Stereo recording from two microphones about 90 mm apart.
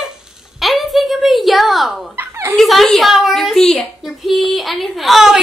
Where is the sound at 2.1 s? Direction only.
30° right (ahead or behind).